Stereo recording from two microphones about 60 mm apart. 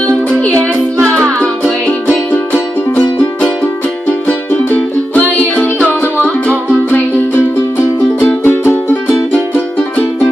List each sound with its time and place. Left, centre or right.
1.9 s music: left
4.3 s music: left
8.5 s music: left